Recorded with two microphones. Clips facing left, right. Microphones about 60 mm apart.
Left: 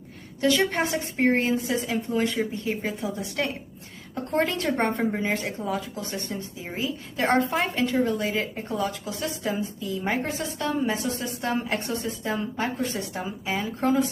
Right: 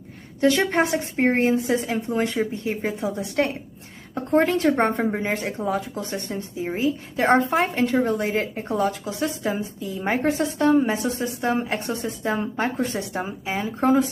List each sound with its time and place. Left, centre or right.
0.4 s a woman's voice: right
4.3 s a woman's voice: right
4.9 s a woman's voice: centre
5.4 s a woman's voice: right
10.2 s a woman's voice: right
11.4 s a woman's voice: centre
12.0 s a woman's voice: right